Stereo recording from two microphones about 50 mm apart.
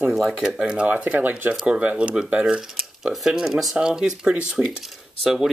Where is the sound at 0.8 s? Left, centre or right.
Right.